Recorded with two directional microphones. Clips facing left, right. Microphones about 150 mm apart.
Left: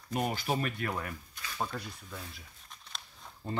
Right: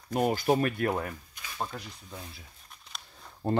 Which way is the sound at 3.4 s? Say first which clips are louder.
Right 9 dB; 60° right (ahead or behind).